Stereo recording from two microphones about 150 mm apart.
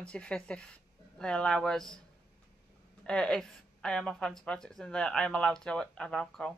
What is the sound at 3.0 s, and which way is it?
Speech, 5° left (ahead or behind).